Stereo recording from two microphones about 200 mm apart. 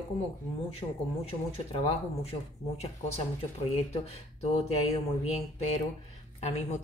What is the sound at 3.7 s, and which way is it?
Speech, 30° left (ahead or behind).